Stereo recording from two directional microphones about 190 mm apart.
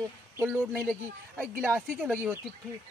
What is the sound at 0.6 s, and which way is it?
Speech, centre (ahead or behind).